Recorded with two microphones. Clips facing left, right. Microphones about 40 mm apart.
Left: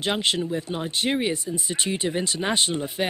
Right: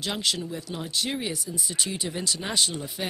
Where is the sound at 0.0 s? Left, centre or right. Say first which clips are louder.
Left 5 dB; left.